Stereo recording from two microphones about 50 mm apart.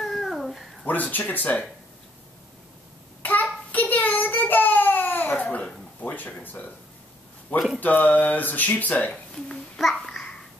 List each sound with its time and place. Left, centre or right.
0.0 s babbling: centre
0.8 s a sound: left
3.2 s child singing: left
5.9 s speech: left
7.5 s speech: centre
7.8 s a sound: left
8.9 s speech: left
9.3 s babbling: centre